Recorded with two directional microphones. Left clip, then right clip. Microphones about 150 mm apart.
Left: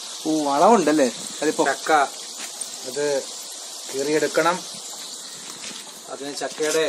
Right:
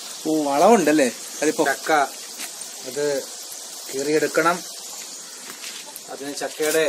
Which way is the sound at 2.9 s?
35° right (ahead or behind).